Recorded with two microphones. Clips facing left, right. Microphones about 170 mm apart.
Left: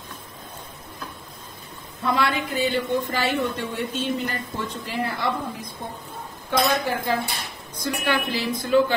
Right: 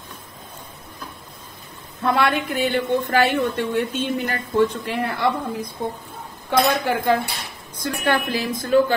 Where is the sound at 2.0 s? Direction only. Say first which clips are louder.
Right 3 dB; 60° right (ahead or behind).